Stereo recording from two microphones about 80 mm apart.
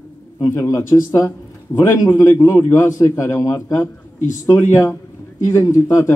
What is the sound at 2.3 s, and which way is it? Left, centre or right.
A man's voice, left.